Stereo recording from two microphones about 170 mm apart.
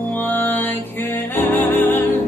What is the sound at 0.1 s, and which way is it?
Music, 10° left (ahead or behind).